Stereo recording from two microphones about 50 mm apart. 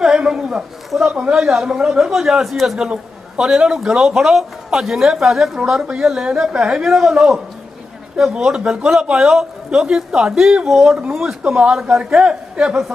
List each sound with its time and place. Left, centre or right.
0.0 s a man's voice: centre
5.6 s a man's voice: centre